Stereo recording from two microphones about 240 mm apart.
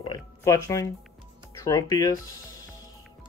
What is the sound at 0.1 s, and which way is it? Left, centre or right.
Music, centre.